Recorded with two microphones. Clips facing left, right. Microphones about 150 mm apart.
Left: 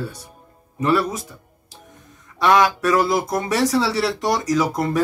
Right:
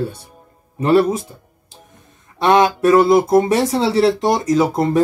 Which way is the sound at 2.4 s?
25° right (ahead or behind).